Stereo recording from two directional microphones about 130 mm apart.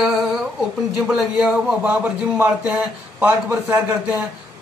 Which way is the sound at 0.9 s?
5° right (ahead or behind).